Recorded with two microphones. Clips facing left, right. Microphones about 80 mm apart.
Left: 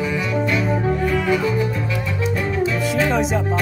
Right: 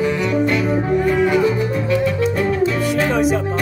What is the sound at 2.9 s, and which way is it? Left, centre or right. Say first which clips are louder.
Music: right 1 dB; centre.